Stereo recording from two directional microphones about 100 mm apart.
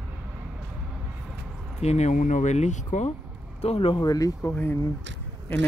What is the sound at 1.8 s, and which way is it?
Speech, 90° left.